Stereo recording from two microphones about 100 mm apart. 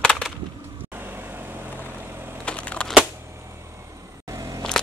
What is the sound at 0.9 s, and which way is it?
Vehicle, 20° right (ahead or behind).